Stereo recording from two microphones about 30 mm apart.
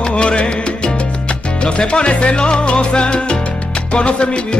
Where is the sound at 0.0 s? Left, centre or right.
Left.